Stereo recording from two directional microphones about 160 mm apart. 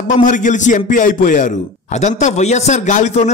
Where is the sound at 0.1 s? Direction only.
50° left (ahead or behind).